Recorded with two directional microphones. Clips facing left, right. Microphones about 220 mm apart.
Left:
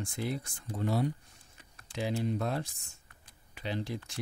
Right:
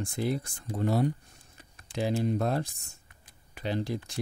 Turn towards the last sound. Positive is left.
turn(degrees=-40)  # may be behind; listen again after turning